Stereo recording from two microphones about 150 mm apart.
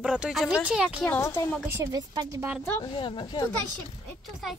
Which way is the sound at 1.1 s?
15° left (ahead or behind).